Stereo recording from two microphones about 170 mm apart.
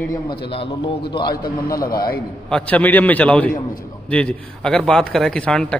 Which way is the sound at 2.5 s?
5° left (ahead or behind).